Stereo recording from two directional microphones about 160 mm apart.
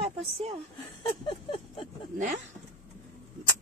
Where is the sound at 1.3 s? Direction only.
30° left (ahead or behind).